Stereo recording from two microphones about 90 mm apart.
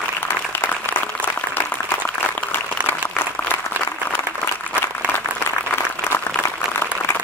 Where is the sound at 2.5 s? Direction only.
25° left (ahead or behind).